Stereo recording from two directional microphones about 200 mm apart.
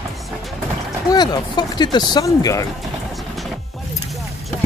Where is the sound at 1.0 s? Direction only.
20° left (ahead or behind).